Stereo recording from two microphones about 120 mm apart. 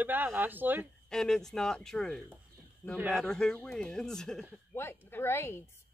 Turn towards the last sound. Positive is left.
turn(degrees=20)  # may be behind; listen again after turning